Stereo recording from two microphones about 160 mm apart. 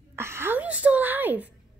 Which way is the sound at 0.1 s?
15° right (ahead or behind).